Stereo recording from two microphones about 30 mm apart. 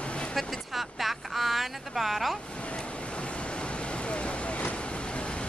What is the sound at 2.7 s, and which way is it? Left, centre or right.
Vehicle, left.